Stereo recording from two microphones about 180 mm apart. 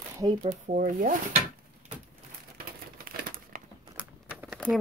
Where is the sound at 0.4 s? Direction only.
40° right (ahead or behind).